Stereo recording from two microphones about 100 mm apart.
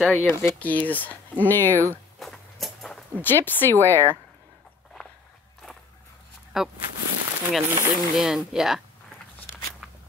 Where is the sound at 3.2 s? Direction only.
20° left (ahead or behind).